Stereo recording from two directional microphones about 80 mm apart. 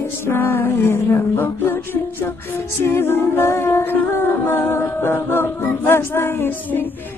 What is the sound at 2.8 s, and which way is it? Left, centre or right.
Music, left.